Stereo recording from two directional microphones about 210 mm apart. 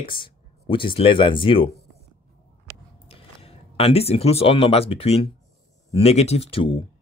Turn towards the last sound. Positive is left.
turn(degrees=25)  # may be behind; listen again after turning